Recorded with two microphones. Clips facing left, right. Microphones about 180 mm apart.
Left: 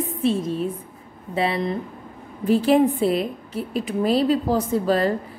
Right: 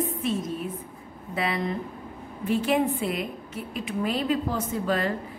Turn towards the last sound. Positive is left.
turn(degrees=35)  # may be behind; listen again after turning